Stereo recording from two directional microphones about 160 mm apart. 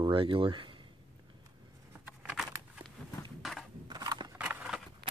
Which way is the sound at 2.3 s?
Centre (ahead or behind).